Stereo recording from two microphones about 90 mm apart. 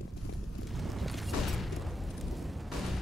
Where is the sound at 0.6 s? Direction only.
Centre (ahead or behind).